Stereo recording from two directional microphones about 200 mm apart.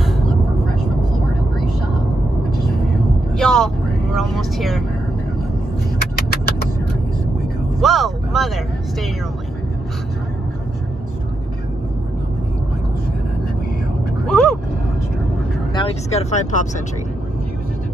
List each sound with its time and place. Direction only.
3.3 s vehicle: centre (ahead or behind)
6.1 s a sound: 50° left (ahead or behind)
7.8 s speech: centre (ahead or behind)
14.2 s vehicle: 5° left (ahead or behind)
15.7 s speech: 30° left (ahead or behind)